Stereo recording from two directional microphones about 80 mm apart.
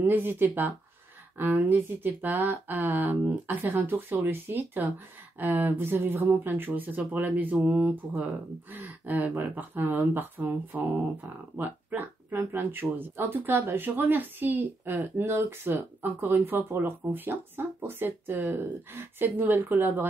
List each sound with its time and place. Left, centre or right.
0.0 s speech: right